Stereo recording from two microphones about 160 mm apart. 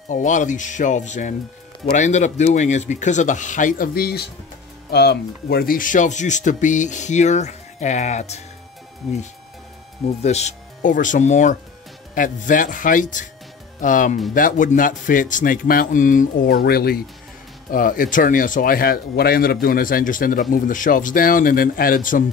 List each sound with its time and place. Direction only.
0.1 s speech: 50° left (ahead or behind); by 4.3 s 80° left
4.9 s speech: 90° left; by 8.4 s 45° left (ahead or behind)
10.2 s speech: 45° left (ahead or behind)
16.5 s speech: 75° left (ahead or behind)
17.6 s speech: 60° left (ahead or behind)